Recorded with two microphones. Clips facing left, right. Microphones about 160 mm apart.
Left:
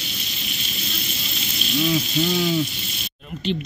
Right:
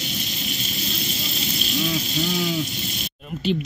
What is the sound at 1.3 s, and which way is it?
Speech, centre (ahead or behind).